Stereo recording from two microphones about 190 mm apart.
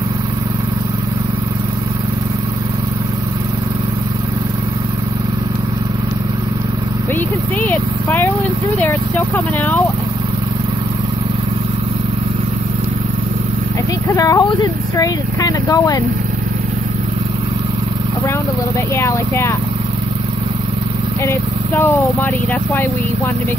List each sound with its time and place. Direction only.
7.6 s speech: 10° left (ahead or behind)
14.1 s speech: 20° left (ahead or behind)
18.9 s speech: 15° left (ahead or behind)
21.3 s speech: 10° left (ahead or behind)